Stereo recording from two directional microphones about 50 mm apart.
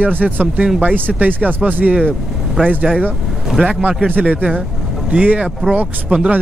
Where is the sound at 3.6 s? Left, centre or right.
Right.